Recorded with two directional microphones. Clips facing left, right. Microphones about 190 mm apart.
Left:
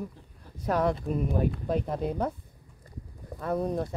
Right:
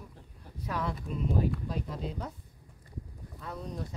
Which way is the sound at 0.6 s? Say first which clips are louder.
Left 9 dB; 45° left (ahead or behind).